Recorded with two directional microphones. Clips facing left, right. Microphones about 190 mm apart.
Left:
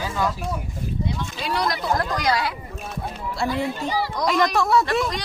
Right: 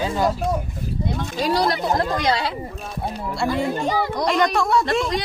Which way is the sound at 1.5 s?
30° right (ahead or behind).